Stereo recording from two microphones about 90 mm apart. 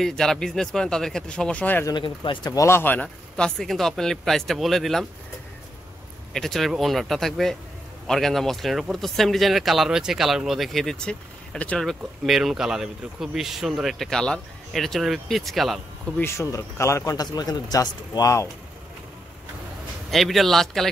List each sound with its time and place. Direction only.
0.0 s speech: 5° left (ahead or behind)
2.0 s speech: 65° left (ahead or behind)
2.5 s speech: 35° left (ahead or behind)
2.8 s a man's voice: 20° left (ahead or behind)
3.3 s speech: 5° left (ahead or behind)
6.3 s speech: 5° left (ahead or behind)
16.2 s speech: 30° left (ahead or behind)
20.1 s speech: centre (ahead or behind)